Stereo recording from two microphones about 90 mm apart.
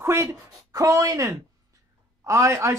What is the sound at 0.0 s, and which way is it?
Speech, 30° right (ahead or behind).